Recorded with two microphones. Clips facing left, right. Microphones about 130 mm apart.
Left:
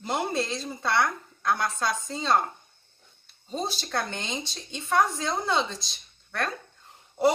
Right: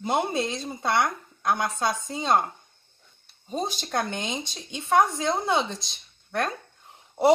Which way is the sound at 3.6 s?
15° right (ahead or behind).